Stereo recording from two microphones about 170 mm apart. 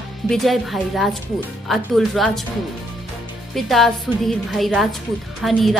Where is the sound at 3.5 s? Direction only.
Centre (ahead or behind).